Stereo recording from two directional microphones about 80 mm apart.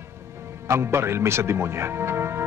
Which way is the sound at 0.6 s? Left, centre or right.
Right.